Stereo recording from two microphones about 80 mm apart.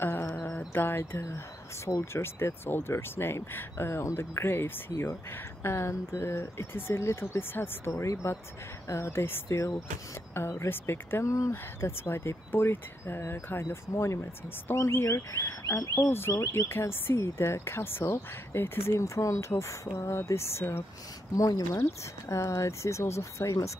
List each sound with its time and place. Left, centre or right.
0.0 s music: left
1.9 s speech: left
11.5 s speech: left
16.1 s speech: left
21.4 s speech: left
22.3 s speech: left